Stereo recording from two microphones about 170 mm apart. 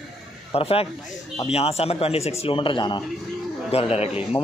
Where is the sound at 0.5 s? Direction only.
35° left (ahead or behind).